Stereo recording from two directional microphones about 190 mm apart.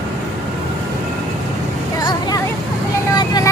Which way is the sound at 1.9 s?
20° left (ahead or behind).